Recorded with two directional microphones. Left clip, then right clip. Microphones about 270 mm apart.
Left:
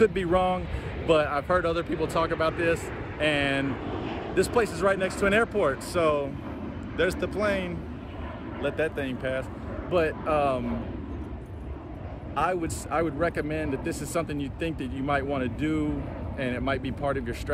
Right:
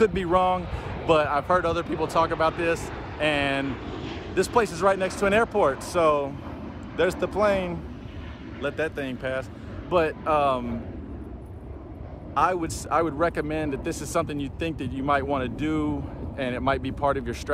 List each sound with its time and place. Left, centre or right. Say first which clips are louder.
0.0 s speech: right 2 dB; centre
8.6 s speech: even; centre
12.4 s speech: right 4 dB; centre